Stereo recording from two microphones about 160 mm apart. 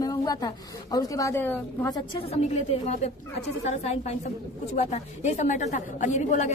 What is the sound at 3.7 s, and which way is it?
A woman's voice, 45° left (ahead or behind).